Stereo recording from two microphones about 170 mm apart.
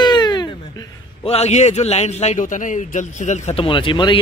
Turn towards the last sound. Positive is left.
turn(degrees=30)  # may be behind; listen again after turning